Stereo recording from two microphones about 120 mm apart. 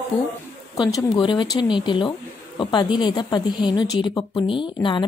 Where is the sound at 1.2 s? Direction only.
40° left (ahead or behind).